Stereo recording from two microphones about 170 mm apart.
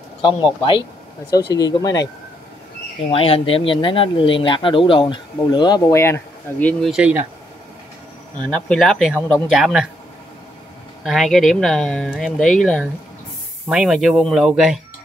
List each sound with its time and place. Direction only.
0.2 s speech: 30° left (ahead or behind)
1.5 s speech: 20° left (ahead or behind)
3.1 s speech: 35° left (ahead or behind); by 6.9 s 10° left (ahead or behind)
6.9 s speech: 5° right (ahead or behind)
8.5 s speech: 5° left (ahead or behind)
11.1 s speech: centre (ahead or behind)